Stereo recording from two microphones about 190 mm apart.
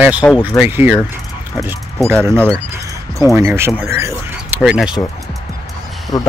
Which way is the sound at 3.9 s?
15° right (ahead or behind).